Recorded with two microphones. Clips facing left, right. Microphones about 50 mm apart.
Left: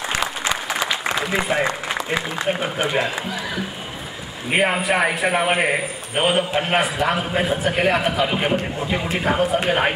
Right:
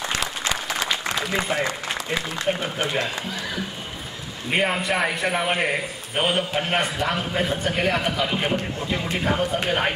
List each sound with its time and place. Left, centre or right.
0.1 s applause: centre
1.0 s a man's voice: centre
4.5 s a man's voice: centre